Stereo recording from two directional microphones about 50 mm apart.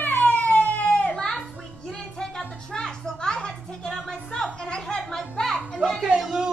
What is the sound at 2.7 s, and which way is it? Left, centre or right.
Music, centre.